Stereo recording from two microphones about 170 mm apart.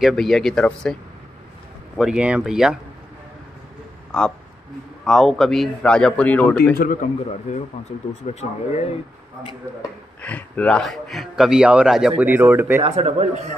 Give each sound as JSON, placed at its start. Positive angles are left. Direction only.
{"t": 0.0, "sound": "speech", "side_deg": 0}
{"t": 2.0, "sound": "speech", "side_deg": -5}
{"t": 5.0, "sound": "speech", "side_deg": 0}
{"t": 6.8, "sound": "a man's voice", "side_deg": 50}
{"t": 10.2, "sound": "speech", "side_deg": 10}
{"t": 12.8, "sound": "a man's voice", "side_deg": -35}